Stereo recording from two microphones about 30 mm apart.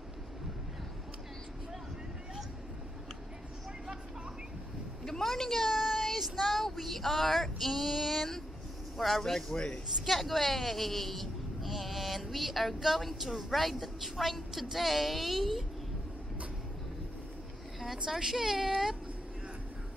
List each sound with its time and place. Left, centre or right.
5.0 s a sound: centre
5.7 s child singing: centre
8.9 s speech: centre
9.2 s a man's voice: centre
10.0 s speech: centre
18.1 s speech: centre